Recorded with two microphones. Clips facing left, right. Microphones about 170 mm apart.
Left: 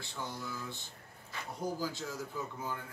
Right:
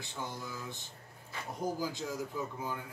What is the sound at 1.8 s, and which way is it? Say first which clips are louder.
Speech: right 2 dB; 15° right (ahead or behind).